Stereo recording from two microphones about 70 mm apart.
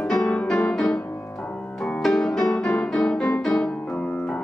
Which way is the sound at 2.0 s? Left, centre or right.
Centre.